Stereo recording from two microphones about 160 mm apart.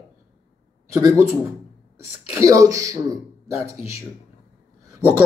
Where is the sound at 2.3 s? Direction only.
20° right (ahead or behind).